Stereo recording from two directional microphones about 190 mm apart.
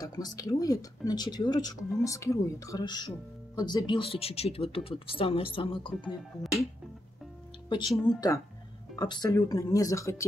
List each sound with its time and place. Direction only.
0.0 s speech: 20° left (ahead or behind)
6.4 s music: centre (ahead or behind)
7.9 s music: centre (ahead or behind)
8.9 s speech: 20° left (ahead or behind)